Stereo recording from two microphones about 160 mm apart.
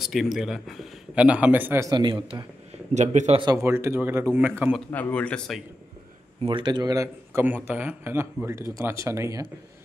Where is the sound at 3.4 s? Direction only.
20° right (ahead or behind).